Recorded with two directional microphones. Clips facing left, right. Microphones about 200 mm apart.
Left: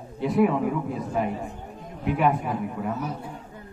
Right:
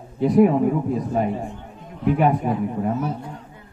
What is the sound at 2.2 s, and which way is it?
Speech, 40° right (ahead or behind).